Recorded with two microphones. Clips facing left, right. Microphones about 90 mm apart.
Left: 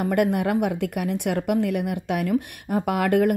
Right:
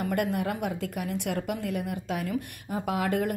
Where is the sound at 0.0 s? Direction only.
55° left (ahead or behind).